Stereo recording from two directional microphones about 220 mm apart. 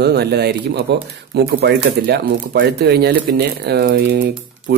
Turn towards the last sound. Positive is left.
turn(degrees=-45)  # may be behind; listen again after turning